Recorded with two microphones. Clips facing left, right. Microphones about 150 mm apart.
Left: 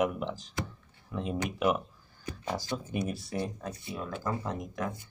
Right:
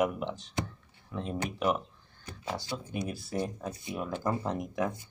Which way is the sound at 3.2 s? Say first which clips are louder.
Right 1 dB; centre (ahead or behind).